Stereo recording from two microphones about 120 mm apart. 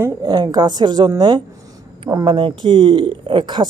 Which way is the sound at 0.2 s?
35° right (ahead or behind).